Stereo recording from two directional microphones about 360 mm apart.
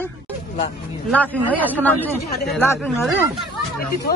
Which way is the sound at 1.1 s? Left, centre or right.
Centre.